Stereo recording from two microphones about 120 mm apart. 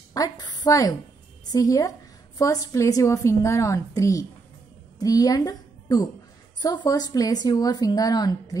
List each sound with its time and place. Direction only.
0.1 s a woman's voice: 30° left (ahead or behind)